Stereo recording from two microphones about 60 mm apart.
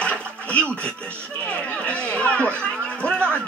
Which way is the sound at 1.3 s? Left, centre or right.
Left.